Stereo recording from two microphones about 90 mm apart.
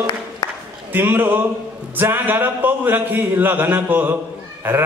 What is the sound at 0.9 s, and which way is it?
A man's voice, 20° right (ahead or behind).